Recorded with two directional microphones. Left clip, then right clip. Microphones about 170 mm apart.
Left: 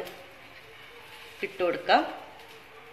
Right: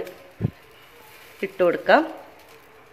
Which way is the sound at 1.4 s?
45° right (ahead or behind).